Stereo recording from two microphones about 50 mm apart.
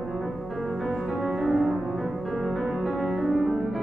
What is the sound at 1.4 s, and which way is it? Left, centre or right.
Music, centre.